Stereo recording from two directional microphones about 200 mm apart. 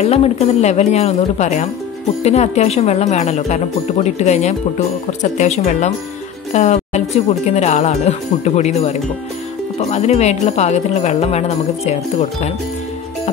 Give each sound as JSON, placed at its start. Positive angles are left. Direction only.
{"t": 0.0, "sound": "speech", "side_deg": 30}